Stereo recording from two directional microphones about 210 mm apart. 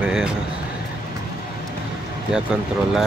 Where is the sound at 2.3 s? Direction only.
5° right (ahead or behind).